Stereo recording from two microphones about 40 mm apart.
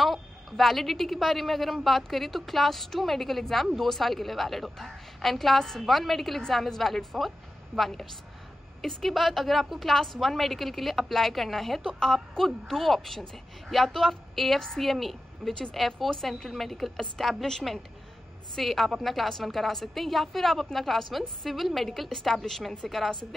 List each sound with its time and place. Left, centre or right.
0.0 s a woman's voice: centre
18.5 s a woman's voice: centre